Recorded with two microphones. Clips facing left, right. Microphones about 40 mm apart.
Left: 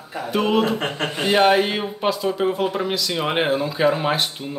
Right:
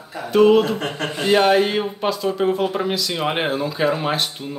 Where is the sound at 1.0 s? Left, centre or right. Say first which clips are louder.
Even; centre.